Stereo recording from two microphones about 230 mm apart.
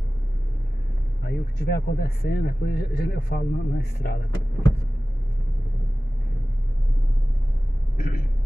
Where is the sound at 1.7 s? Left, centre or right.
Left.